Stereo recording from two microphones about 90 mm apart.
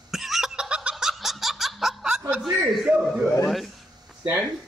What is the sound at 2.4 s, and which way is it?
A man's voice, 5° right (ahead or behind).